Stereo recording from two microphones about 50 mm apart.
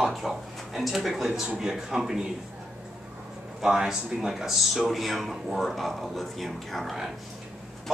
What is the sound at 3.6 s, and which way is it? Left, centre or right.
Speech, centre.